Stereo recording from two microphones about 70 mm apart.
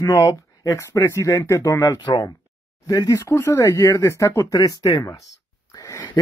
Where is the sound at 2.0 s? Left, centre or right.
Left.